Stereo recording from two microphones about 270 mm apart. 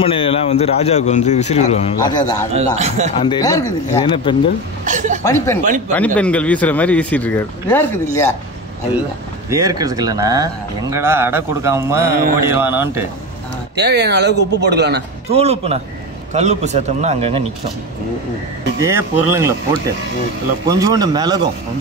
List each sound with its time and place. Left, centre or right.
0.0 s a man's voice: centre
2.5 s a man's voice: right
3.2 s speech: centre
4.8 s a man's voice: right
5.2 s speech: centre
9.5 s speech: centre
13.7 s a man's voice: right
15.2 s a man's voice: right
18.8 s speech: centre
20.6 s speech: centre